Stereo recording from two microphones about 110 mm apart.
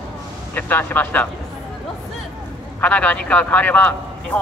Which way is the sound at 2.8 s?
10° left (ahead or behind).